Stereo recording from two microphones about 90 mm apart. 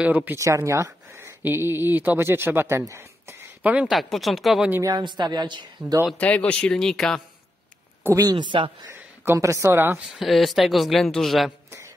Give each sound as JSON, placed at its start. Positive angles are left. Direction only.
{"t": 0.0, "sound": "speech", "side_deg": -20}
{"t": 0.7, "sound": "speech", "side_deg": -35}
{"t": 2.8, "sound": "a sound", "side_deg": -30}
{"t": 3.9, "sound": "a woman's voice", "side_deg": 0}
{"t": 5.0, "sound": "a woman's voice", "side_deg": -50}
{"t": 6.1, "sound": "a man's voice", "side_deg": 15}
{"t": 8.0, "sound": "speech", "side_deg": -35}
{"t": 8.4, "sound": "speech", "side_deg": -65}
{"t": 9.2, "sound": "speech", "side_deg": -30}
{"t": 10.1, "sound": "a woman's voice", "side_deg": 0}